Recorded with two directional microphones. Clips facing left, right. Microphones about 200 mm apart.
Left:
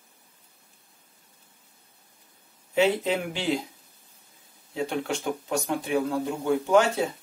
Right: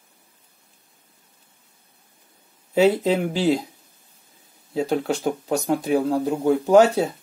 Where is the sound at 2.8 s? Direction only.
35° right (ahead or behind).